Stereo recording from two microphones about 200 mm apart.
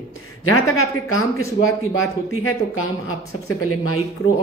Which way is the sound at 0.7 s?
90° left.